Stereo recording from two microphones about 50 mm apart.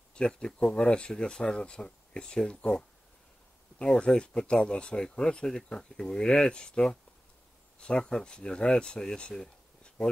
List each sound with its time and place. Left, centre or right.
0.1 s speech: left
3.8 s speech: left
9.3 s a sound: centre